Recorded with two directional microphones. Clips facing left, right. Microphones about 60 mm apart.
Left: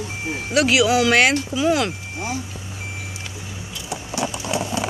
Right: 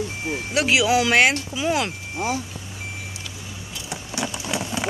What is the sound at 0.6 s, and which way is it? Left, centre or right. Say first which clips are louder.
Speech: left 2 dB; centre.